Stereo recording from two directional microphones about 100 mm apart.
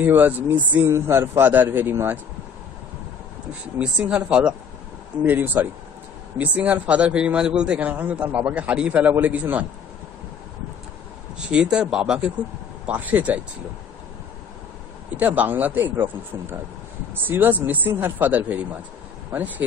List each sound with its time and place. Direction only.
0.0 s speech: 20° right (ahead or behind)
3.7 s a man's voice: 15° right (ahead or behind)
11.5 s a man's voice: 10° right (ahead or behind)
15.1 s a man's voice: 15° right (ahead or behind)